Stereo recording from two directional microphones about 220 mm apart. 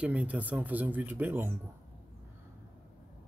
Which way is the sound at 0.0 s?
5° right (ahead or behind).